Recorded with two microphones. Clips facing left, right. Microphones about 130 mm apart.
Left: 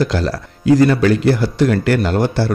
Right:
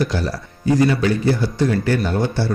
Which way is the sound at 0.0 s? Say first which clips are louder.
Left 4 dB; 90° left.